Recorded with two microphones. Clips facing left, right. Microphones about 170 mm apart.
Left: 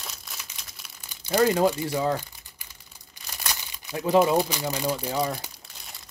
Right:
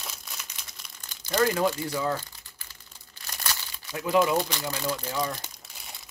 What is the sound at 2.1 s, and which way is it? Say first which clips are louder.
Crumpling: left 3 dB; 15° left (ahead or behind).